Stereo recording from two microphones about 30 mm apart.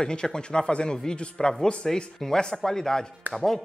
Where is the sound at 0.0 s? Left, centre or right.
Left.